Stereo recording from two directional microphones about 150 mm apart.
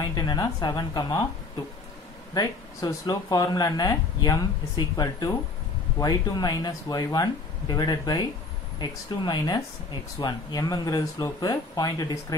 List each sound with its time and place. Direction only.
0.0 s speech: 25° left (ahead or behind)
2.3 s speech: 25° left (ahead or behind)